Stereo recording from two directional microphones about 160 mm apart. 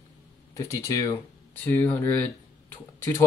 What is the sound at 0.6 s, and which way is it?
Speech, 20° left (ahead or behind).